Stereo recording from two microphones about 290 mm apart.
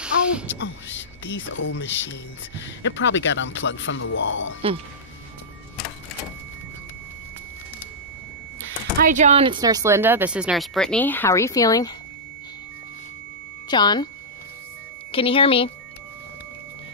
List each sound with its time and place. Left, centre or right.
0.0 s a sound: centre
0.6 s speech: left
9.0 s speech: right; by 11.9 s centre
13.7 s speech: centre
15.0 s speech: centre